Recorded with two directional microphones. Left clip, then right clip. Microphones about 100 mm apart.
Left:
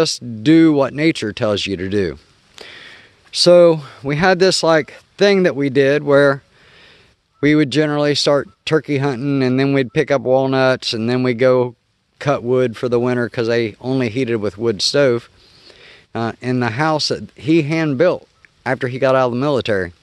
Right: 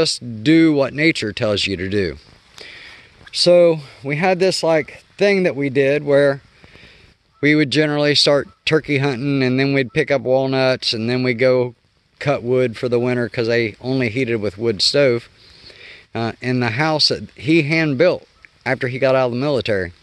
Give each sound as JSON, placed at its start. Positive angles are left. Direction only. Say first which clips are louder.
{"t": 0.0, "sound": "speech", "louder": "left 1 dB", "side_deg": 30}
{"t": 2.5, "sound": "speech", "louder": "left 1 dB", "side_deg": 50}
{"t": 7.3, "sound": "speech", "louder": "left 1 dB", "side_deg": 25}